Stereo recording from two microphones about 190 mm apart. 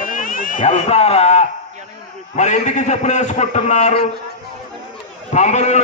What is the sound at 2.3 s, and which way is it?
A man's voice, 40° left (ahead or behind).